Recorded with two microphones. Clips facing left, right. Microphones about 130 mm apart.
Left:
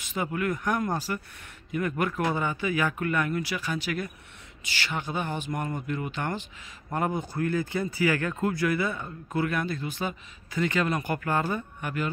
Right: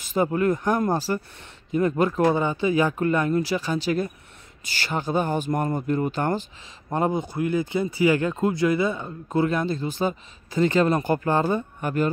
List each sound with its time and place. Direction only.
0.0 s speech: 35° right (ahead or behind)
6.9 s speech: 20° right (ahead or behind); by 12.1 s 35° right (ahead or behind)